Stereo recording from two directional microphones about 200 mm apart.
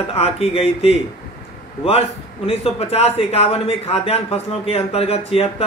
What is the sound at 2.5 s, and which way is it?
A man's voice, 30° left (ahead or behind).